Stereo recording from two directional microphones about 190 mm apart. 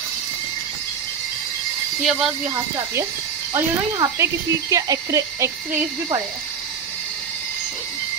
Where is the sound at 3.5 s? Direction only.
15° right (ahead or behind).